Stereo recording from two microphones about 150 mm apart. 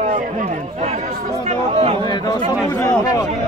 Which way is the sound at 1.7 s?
40° right (ahead or behind).